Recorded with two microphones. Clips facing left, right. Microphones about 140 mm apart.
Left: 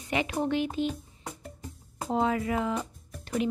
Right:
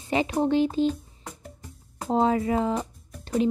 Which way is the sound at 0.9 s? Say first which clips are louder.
Left 1 dB; centre (ahead or behind).